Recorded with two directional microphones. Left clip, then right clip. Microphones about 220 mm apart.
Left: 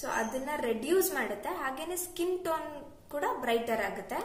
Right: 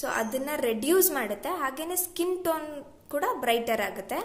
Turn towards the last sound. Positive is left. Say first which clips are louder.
# right 4 dB
turn(degrees=-45)  # may be behind; listen again after turning